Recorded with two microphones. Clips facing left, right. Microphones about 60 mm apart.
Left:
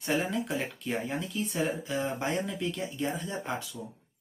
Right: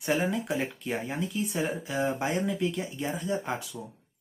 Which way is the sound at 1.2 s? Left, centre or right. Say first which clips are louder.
Right 1 dB; centre.